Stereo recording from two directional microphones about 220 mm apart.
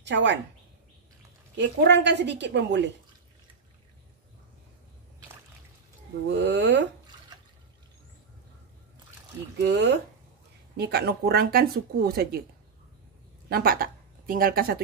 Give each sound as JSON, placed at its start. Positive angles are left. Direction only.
{"t": 0.0, "sound": "speech", "side_deg": -50}
{"t": 1.6, "sound": "speech", "side_deg": -55}
{"t": 6.3, "sound": "speech", "side_deg": -50}
{"t": 9.6, "sound": "speech", "side_deg": -50}
{"t": 13.5, "sound": "speech", "side_deg": -40}